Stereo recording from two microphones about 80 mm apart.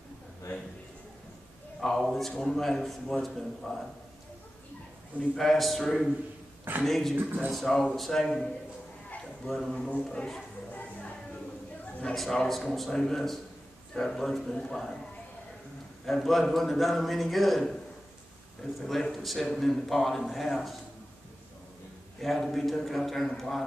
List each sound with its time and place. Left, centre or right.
1.8 s a man's voice: centre
5.3 s a man's voice: centre
9.5 s a man's voice: centre
10.7 s music: centre
12.0 s a man's voice: centre
16.1 s a man's voice: centre
18.8 s a man's voice: centre
22.2 s a man's voice: centre